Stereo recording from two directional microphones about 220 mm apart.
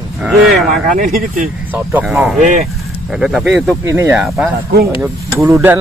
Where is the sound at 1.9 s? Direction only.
5° right (ahead or behind).